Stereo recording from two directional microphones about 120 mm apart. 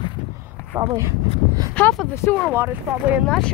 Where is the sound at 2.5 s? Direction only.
15° right (ahead or behind).